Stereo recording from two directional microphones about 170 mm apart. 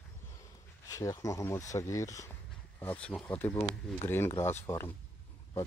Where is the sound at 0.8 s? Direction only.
20° left (ahead or behind).